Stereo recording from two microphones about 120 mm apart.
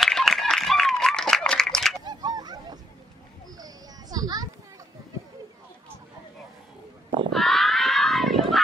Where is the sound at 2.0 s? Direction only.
35° right (ahead or behind).